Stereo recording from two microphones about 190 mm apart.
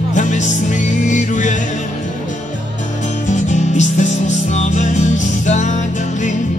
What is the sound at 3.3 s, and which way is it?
Music, 40° left (ahead or behind).